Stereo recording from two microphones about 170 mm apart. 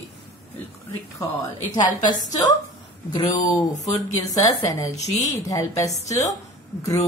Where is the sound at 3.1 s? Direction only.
20° left (ahead or behind).